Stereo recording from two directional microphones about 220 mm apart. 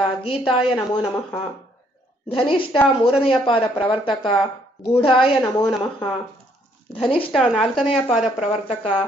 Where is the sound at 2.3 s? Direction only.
25° left (ahead or behind).